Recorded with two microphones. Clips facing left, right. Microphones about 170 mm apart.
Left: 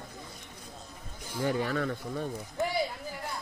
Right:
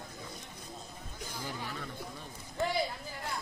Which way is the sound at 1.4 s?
75° left (ahead or behind).